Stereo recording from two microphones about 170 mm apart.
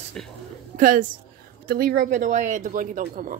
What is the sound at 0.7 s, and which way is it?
Speech, 50° right (ahead or behind).